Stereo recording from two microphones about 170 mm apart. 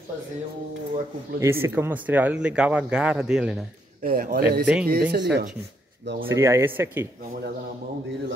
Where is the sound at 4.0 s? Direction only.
60° right (ahead or behind); by 5.5 s 75° right (ahead or behind).